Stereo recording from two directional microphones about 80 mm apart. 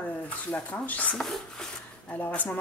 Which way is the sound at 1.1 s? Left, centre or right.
Centre.